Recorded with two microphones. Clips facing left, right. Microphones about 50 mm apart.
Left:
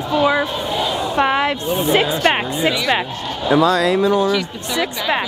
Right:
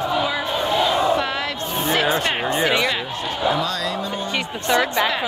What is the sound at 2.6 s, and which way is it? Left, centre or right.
Speech, right.